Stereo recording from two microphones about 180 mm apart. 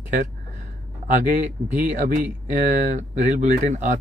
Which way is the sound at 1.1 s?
45° right (ahead or behind).